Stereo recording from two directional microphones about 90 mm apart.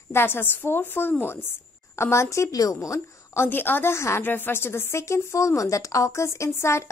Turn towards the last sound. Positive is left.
turn(degrees=30)  # may be behind; listen again after turning